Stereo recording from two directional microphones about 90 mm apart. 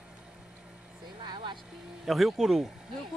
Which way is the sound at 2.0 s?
Centre (ahead or behind).